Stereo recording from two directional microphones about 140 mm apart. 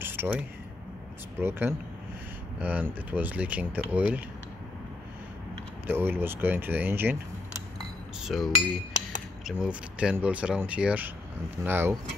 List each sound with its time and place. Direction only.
0.0 s a sound: 15° right (ahead or behind)
1.4 s speech: 15° right (ahead or behind)
5.9 s speech: 15° right (ahead or behind)
8.2 s cutlery: centre (ahead or behind)
9.4 s speech: 5° right (ahead or behind)